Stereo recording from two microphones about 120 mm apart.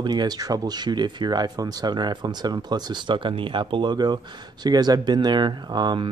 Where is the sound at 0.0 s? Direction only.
35° right (ahead or behind).